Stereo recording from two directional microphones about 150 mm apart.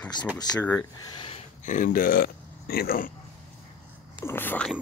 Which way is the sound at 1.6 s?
60° left (ahead or behind).